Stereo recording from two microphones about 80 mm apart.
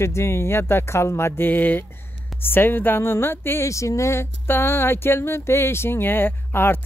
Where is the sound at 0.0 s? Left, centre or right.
Left.